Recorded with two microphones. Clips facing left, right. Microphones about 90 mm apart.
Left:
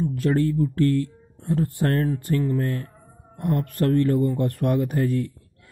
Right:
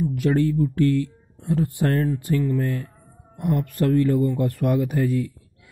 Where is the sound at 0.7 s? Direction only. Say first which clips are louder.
Right 1 dB; 15° right (ahead or behind).